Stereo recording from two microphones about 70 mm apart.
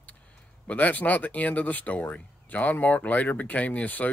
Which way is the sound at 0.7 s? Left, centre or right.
Left.